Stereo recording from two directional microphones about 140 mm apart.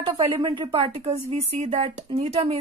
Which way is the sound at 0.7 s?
45° right (ahead or behind).